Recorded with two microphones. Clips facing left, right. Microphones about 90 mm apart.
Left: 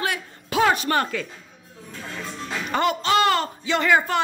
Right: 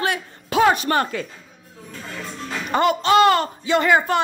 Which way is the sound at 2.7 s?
25° right (ahead or behind).